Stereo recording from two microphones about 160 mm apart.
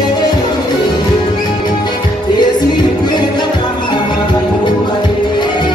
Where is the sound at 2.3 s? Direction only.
25° left (ahead or behind).